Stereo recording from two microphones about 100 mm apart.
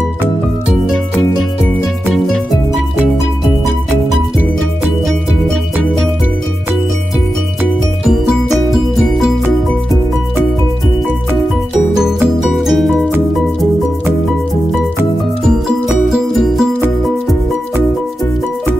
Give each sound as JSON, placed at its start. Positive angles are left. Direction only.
{"t": 8.6, "sound": "music", "side_deg": 0}
{"t": 12.5, "sound": "music", "side_deg": 0}
{"t": 16.1, "sound": "music", "side_deg": 0}